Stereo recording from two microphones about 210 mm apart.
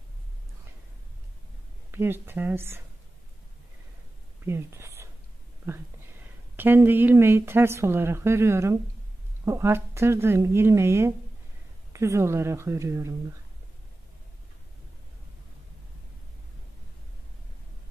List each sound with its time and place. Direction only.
1.9 s speech: 10° right (ahead or behind)
4.5 s speech: 10° right (ahead or behind)
6.5 s speech: 10° right (ahead or behind)